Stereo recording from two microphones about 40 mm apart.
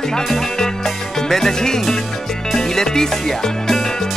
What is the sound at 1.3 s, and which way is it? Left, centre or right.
Speech, centre.